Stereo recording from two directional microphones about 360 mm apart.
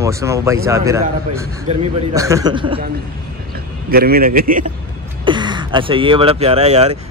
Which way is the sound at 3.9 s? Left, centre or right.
Right.